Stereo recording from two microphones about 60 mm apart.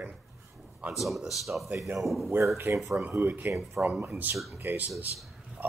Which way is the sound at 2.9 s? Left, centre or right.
Right.